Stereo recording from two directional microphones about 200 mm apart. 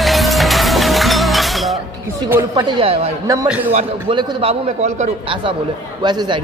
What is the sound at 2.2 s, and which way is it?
Speech, 10° right (ahead or behind).